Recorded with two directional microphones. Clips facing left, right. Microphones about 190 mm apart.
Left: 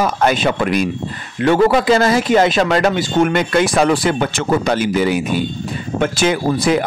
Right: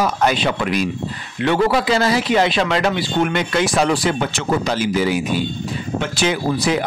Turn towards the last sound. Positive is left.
turn(degrees=50)  # may be behind; listen again after turning